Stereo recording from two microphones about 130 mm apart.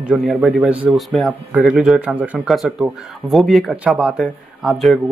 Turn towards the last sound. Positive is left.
turn(degrees=0)  # may be behind; listen again after turning